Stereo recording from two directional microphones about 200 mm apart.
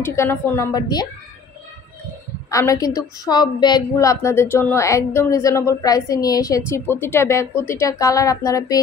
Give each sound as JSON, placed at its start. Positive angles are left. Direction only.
{"t": 0.0, "sound": "a woman's voice", "side_deg": 10}
{"t": 2.5, "sound": "a woman's voice", "side_deg": 15}